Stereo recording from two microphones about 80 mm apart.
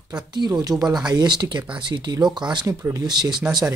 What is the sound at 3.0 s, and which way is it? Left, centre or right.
Speech, right.